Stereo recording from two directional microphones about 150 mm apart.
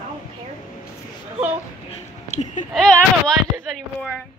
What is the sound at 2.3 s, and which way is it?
Speech, 50° left (ahead or behind).